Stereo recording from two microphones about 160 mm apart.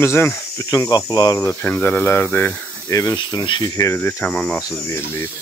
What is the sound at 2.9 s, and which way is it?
Speech, 20° left (ahead or behind).